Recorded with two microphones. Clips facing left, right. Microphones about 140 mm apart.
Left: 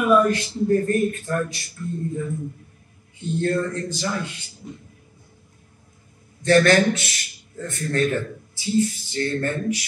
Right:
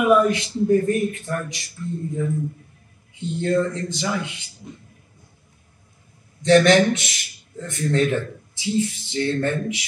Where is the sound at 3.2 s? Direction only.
20° right (ahead or behind).